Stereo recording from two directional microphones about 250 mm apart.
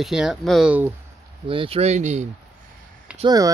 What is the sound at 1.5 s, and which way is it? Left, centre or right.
Speech, right.